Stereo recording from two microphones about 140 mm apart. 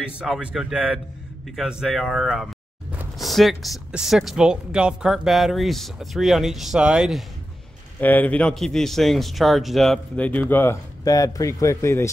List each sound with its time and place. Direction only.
0.2 s speech: 5° right (ahead or behind)
1.6 s a sound: 5° right (ahead or behind)
3.3 s speech: centre (ahead or behind)
8.0 s speech: 10° left (ahead or behind)
10.1 s speech: 10° left (ahead or behind)